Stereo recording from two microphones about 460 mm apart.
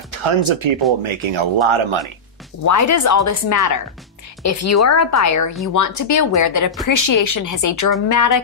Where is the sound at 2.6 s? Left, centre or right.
Left.